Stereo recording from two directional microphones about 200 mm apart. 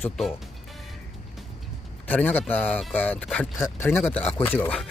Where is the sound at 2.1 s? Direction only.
10° left (ahead or behind).